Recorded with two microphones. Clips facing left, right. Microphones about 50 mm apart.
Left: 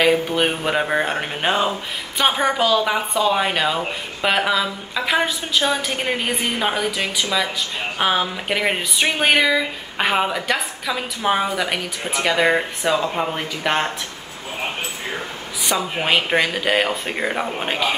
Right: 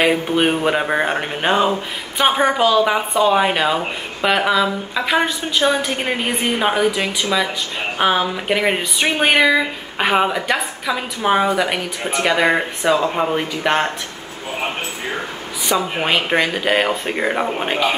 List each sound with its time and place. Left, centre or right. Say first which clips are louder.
0.0 s a woman's voice: right 1 dB; centre
15.6 s speech: right 3 dB; centre